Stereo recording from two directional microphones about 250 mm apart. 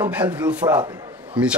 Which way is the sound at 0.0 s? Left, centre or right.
Centre.